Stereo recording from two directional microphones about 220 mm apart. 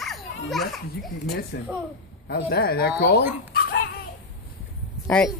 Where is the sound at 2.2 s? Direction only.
50° left (ahead or behind).